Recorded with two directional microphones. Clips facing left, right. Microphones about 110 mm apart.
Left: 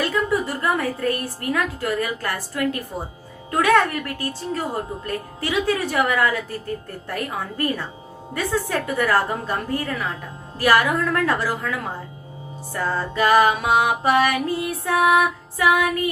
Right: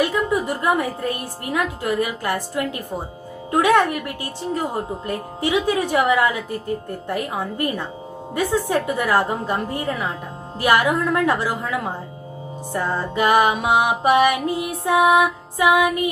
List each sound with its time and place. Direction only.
0.0 s a woman's voice: 15° right (ahead or behind)